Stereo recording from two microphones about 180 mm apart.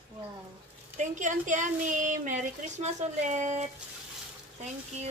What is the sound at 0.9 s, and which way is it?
Speech, 45° right (ahead or behind).